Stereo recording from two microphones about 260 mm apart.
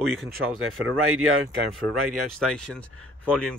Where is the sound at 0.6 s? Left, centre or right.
Right.